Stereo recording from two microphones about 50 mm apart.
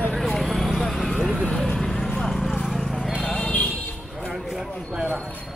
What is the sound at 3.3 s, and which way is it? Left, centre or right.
Music, centre.